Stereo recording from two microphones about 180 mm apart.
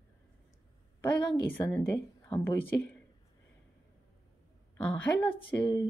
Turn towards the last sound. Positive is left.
turn(degrees=25)  # may be behind; listen again after turning